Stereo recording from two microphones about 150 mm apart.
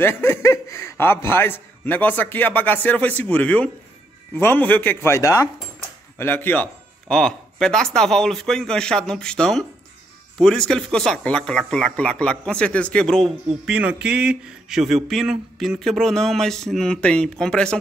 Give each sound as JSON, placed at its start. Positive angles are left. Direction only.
{"t": 0.0, "sound": "speech", "side_deg": 15}